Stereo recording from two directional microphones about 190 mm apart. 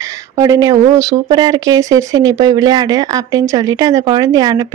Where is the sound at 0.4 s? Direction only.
20° right (ahead or behind).